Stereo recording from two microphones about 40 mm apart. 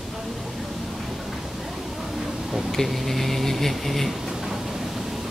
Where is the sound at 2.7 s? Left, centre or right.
Centre.